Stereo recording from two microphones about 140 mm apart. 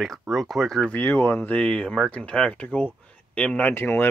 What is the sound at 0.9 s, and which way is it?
Speech, 15° left (ahead or behind).